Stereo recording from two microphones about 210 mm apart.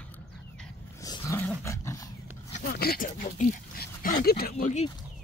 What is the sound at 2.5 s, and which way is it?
Speech, 45° left (ahead or behind).